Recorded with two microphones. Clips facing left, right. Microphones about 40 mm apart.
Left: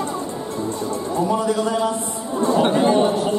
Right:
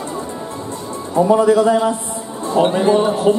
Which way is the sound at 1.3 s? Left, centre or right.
Right.